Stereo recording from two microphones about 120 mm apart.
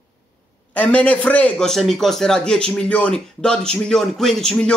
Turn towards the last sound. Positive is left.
turn(degrees=5)  # may be behind; listen again after turning